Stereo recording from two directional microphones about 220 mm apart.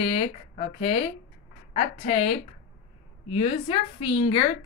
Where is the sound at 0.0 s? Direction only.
30° left (ahead or behind).